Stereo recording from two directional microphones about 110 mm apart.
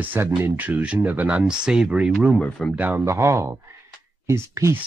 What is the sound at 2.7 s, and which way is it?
Speech, 15° right (ahead or behind).